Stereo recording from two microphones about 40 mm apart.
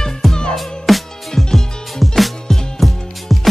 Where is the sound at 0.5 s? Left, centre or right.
Centre.